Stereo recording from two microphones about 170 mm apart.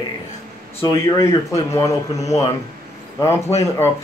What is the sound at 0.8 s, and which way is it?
Speech, 20° left (ahead or behind).